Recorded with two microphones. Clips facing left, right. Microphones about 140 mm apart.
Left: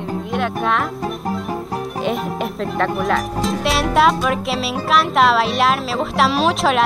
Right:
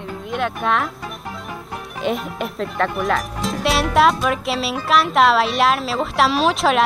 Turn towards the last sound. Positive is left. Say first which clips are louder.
# even
turn(degrees=0)  # may be behind; listen again after turning